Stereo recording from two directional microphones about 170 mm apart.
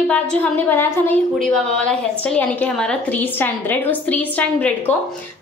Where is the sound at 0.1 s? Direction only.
10° left (ahead or behind).